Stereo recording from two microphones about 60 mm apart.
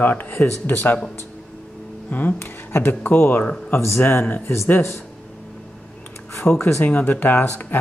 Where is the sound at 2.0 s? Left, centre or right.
Left.